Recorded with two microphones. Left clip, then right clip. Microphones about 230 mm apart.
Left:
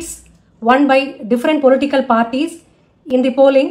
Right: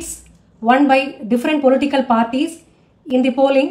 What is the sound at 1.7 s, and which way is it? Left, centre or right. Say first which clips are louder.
A woman's voice: left 2 dB; centre.